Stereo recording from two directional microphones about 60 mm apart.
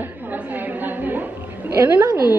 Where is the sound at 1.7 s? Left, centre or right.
Right.